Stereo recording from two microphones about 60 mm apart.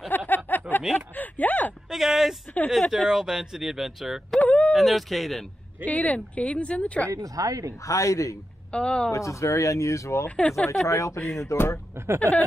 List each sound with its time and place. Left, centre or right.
0.1 s a sound: left
1.9 s a sound: centre
2.9 s speech: centre
4.4 s speech: centre
4.7 s speech: centre
5.9 s speech: left
7.1 s a woman's voice: right
7.8 s speech: left
8.7 s speech: centre
9.1 s speech: left
10.2 s speech: centre
10.9 s speech: left
11.9 s speech: right